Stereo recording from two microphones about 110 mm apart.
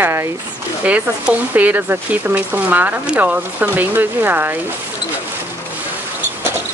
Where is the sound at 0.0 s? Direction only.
25° right (ahead or behind).